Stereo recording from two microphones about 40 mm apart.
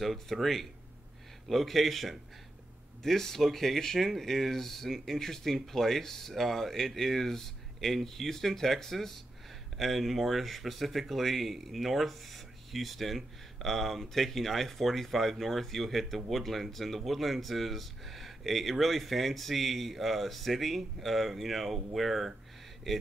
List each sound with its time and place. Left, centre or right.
0.0 s speech: centre